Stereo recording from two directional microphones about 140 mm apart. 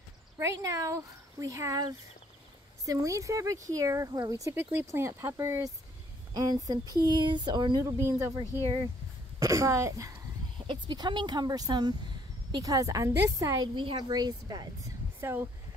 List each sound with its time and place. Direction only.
0.4 s speech: 20° right (ahead or behind)
7.8 s speech: 20° right (ahead or behind)
10.7 s speech: 35° right (ahead or behind)
13.7 s speech: 35° right (ahead or behind)
15.1 s speech: 15° right (ahead or behind)